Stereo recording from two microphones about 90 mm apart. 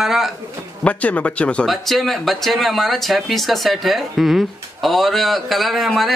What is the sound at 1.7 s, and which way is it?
Speech, centre (ahead or behind).